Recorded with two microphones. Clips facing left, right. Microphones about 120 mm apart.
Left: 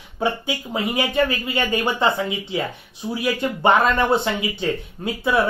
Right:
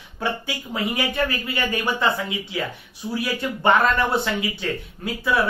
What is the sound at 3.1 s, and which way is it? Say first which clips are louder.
Speech: left 3 dB; 20° left (ahead or behind).